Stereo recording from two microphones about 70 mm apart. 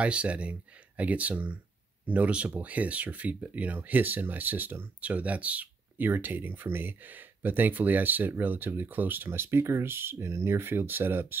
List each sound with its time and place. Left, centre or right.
0.0 s speech: centre